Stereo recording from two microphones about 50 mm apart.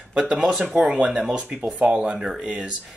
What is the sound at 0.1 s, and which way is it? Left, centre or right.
Speech, right.